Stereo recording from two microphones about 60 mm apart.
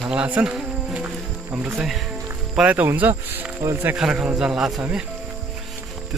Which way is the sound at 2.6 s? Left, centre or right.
Right.